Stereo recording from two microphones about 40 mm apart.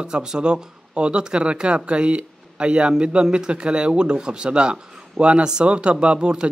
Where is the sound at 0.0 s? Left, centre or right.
Centre.